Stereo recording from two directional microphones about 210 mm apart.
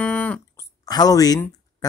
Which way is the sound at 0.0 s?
5° left (ahead or behind).